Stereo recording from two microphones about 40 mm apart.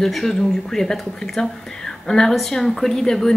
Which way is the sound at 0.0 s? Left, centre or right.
Centre.